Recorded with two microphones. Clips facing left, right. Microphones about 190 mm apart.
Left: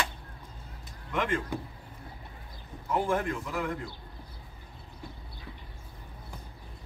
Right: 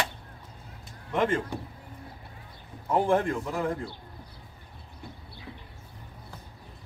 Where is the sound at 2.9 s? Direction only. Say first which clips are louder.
Right 4 dB; 35° right (ahead or behind).